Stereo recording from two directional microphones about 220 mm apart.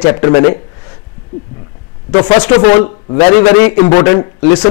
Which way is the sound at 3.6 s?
15° left (ahead or behind).